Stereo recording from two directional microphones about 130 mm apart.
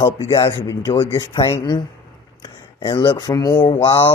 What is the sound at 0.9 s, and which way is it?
Speech, 40° left (ahead or behind).